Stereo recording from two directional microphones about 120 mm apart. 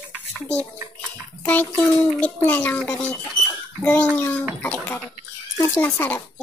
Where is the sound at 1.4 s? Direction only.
10° left (ahead or behind).